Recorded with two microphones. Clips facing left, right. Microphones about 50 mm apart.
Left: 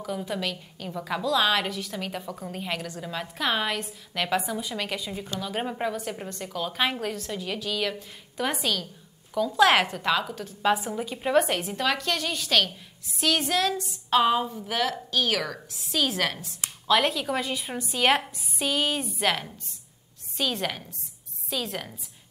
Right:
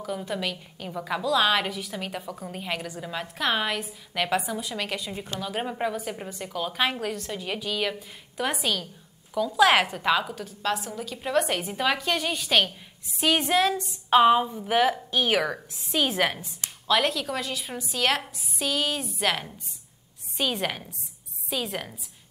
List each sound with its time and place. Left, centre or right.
0.0 s a woman's voice: centre
10.6 s a woman's voice: centre
16.6 s a woman's voice: centre
20.3 s a woman's voice: centre